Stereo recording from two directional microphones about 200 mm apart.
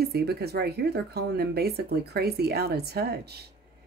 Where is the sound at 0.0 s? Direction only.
55° right (ahead or behind).